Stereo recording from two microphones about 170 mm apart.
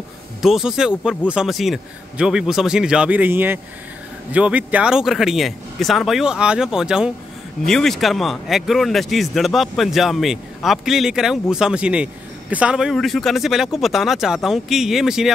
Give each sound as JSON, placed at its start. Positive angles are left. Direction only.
{"t": 0.4, "sound": "a man's voice", "side_deg": 0}